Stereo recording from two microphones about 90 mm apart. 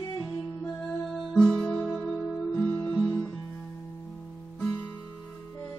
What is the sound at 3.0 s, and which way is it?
Music, 30° left (ahead or behind).